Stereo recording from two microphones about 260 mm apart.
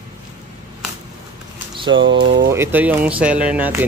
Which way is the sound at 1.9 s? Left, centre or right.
Right.